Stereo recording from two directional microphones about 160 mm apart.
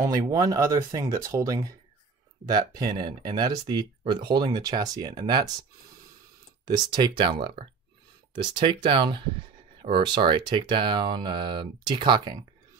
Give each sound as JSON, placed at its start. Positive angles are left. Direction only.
{"t": 0.0, "sound": "speech", "side_deg": -20}
{"t": 6.6, "sound": "speech", "side_deg": -25}